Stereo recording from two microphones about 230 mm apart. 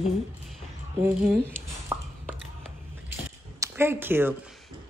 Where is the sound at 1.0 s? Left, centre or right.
Centre.